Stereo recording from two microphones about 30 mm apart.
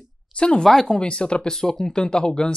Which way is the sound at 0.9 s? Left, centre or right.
Left.